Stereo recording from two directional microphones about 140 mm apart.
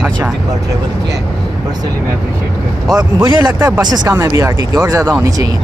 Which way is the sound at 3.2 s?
30° right (ahead or behind).